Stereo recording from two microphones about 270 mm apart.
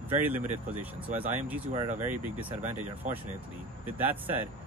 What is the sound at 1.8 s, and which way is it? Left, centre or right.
Speech, right.